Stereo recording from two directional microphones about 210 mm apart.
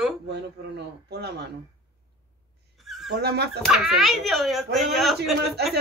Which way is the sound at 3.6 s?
Centre (ahead or behind).